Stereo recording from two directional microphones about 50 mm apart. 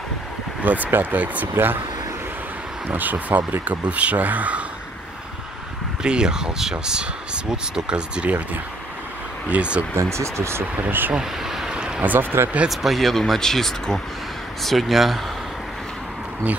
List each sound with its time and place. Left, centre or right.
0.7 s speech: right
1.5 s speech: right
2.9 s speech: right
6.0 s speech: centre
9.5 s speech: right
10.1 s speech: right
10.8 s speech: right
11.1 s a sound: centre
12.0 s speech: right
12.6 s speech: centre